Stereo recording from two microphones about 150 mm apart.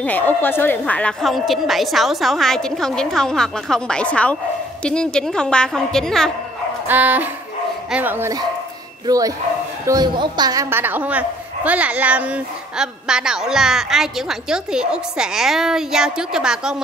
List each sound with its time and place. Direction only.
0.0 s a woman's voice: 10° left (ahead or behind)
6.9 s speech: 10° right (ahead or behind)
9.0 s a woman's voice: 25° right (ahead or behind); by 16.8 s 5° right (ahead or behind)